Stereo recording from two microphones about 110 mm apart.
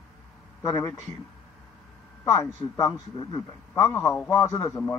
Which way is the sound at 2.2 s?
30° left (ahead or behind).